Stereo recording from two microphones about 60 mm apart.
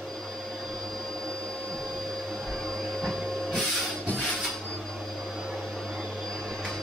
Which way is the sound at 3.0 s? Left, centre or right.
Centre.